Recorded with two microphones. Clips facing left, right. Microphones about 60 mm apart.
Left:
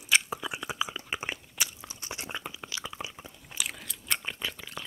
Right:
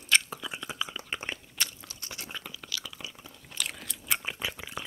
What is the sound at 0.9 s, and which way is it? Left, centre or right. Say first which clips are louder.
Crunch: left 1 dB; centre.